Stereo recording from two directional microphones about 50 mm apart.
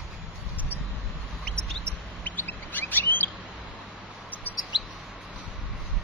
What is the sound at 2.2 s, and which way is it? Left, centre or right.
Bird, left.